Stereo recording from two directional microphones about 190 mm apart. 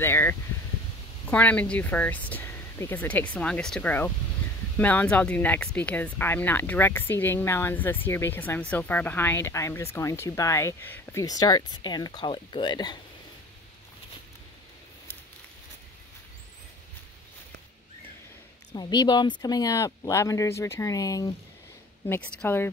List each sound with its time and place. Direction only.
0.0 s speech: 10° left (ahead or behind)
18.7 s speech: 20° left (ahead or behind)